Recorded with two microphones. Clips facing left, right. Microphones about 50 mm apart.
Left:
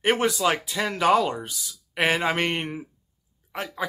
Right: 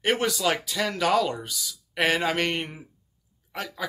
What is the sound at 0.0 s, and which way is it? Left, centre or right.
A man's voice, left.